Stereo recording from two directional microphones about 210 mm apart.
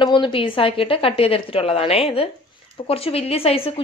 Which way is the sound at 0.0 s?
25° left (ahead or behind).